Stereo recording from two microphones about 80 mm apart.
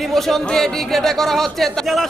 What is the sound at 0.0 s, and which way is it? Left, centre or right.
A man's voice, centre.